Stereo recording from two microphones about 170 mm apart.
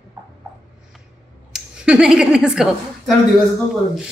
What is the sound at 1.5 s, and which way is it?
A woman's voice, 5° right (ahead or behind).